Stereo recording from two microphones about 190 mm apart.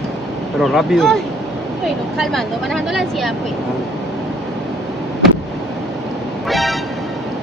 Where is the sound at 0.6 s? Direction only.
Centre (ahead or behind).